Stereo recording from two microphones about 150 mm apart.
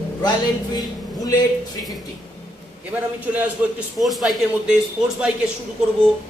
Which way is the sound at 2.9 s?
10° right (ahead or behind).